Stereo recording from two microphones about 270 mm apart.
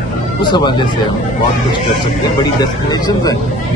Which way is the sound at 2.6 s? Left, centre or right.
Centre.